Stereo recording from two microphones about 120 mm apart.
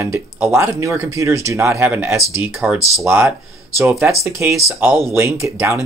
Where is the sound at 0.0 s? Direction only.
20° right (ahead or behind).